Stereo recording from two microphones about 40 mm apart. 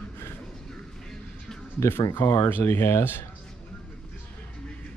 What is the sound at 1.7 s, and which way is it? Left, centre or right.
Speech, left.